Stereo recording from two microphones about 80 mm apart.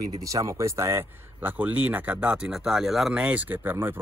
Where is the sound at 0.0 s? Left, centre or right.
Right; by 3.2 s centre.